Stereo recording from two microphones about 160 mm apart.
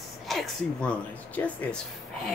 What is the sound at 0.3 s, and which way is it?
A woman's voice, 5° left (ahead or behind).